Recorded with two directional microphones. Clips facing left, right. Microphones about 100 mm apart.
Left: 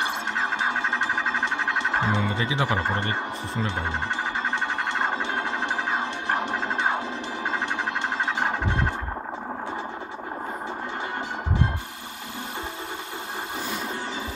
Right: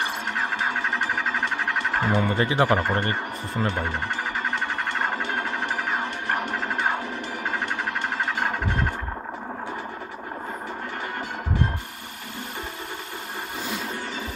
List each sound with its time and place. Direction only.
0.0 s music: 20° left (ahead or behind)
2.2 s speech: 55° right (ahead or behind)
2.8 s speech: 20° left (ahead or behind)
4.5 s music: 20° left (ahead or behind)